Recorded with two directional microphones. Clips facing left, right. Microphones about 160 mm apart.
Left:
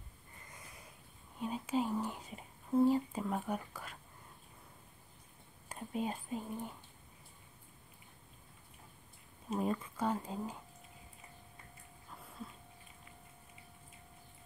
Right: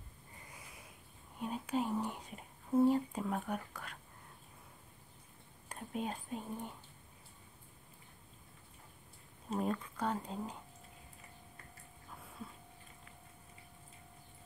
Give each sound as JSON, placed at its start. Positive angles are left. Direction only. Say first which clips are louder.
{"t": 1.4, "sound": "whispering", "louder": "left 1 dB", "side_deg": 0}
{"t": 5.7, "sound": "whispering", "louder": "left 2 dB", "side_deg": 5}
{"t": 9.5, "sound": "whispering", "louder": "left 1 dB", "side_deg": 5}